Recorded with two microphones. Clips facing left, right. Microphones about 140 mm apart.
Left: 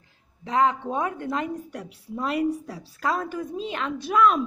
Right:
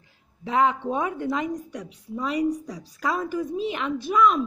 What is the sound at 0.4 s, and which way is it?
Speech, 35° left (ahead or behind).